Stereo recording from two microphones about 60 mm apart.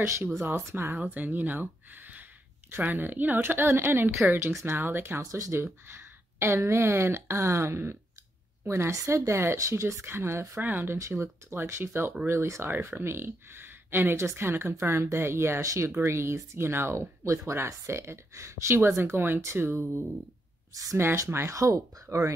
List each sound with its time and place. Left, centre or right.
0.7 s speech: right
0.9 s a woman's voice: right
5.3 s a woman's voice: right
8.9 s speech: right
10.6 s a woman's voice: right
11.0 s speech: right
12.6 s speech: right
15.6 s speech: right
15.9 s a woman's voice: right
20.7 s speech: right
21.3 s speech: right
21.5 s speech: right